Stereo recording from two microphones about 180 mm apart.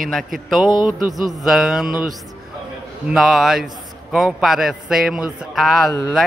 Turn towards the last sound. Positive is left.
turn(degrees=0)  # may be behind; listen again after turning